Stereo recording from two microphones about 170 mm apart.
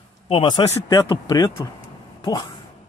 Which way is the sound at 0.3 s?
25° left (ahead or behind).